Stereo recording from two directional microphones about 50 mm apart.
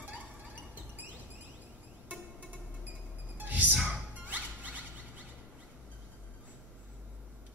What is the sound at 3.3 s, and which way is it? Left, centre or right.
Music, right.